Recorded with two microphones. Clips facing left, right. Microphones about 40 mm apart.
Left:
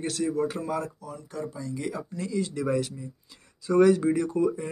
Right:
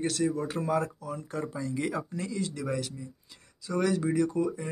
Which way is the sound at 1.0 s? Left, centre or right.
Right.